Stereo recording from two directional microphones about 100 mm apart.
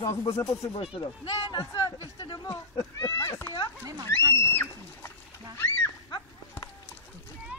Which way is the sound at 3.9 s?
45° right (ahead or behind).